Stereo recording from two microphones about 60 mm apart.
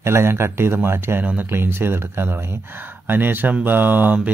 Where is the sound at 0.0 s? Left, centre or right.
Right.